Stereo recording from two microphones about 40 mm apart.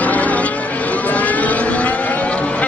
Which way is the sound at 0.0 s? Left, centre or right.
Left.